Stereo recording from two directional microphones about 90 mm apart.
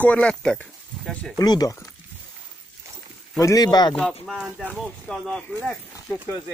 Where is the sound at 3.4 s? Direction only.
45° left (ahead or behind).